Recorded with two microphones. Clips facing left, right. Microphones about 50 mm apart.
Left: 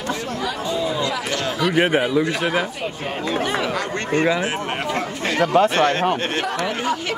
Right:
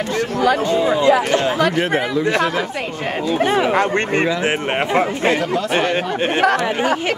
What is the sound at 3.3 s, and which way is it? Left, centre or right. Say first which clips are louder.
Speech: right 8 dB; right.